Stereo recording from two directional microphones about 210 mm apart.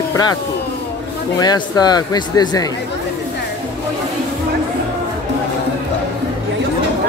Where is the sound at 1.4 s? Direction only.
20° left (ahead or behind).